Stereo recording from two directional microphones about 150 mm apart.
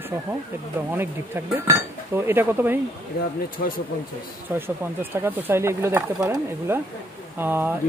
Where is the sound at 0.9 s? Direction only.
15° right (ahead or behind).